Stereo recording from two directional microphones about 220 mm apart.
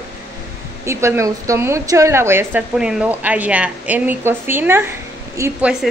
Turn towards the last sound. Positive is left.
turn(degrees=-5)  # may be behind; listen again after turning